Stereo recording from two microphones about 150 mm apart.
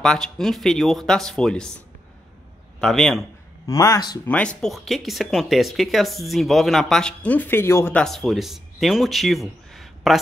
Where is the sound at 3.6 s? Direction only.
25° left (ahead or behind).